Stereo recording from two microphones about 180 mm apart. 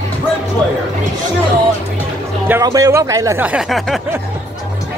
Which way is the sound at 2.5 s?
20° right (ahead or behind).